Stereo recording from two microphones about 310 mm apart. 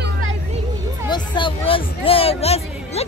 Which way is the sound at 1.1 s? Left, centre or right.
Centre.